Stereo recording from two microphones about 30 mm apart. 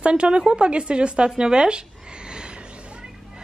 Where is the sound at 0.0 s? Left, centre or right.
Right.